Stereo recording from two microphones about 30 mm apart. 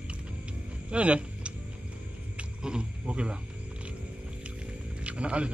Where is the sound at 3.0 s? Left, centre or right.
Right.